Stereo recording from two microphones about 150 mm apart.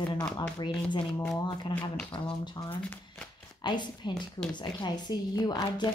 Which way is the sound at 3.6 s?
30° left (ahead or behind).